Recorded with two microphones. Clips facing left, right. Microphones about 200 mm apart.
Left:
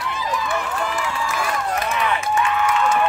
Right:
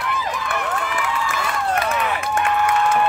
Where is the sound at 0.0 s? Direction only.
60° right (ahead or behind).